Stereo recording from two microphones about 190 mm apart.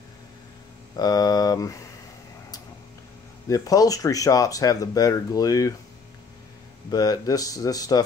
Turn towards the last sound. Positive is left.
turn(degrees=20)  # may be behind; listen again after turning